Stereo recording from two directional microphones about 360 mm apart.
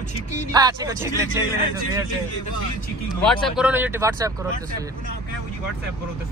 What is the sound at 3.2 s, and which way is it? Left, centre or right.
Speech, centre.